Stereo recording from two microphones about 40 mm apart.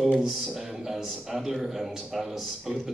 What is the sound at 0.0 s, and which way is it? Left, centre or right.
A man's voice, centre.